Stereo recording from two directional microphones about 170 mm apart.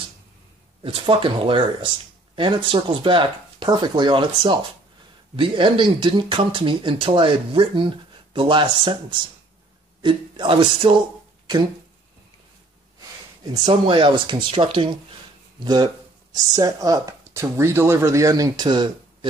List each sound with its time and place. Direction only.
0.8 s speech: 30° right (ahead or behind)
13.5 s speech: 30° right (ahead or behind)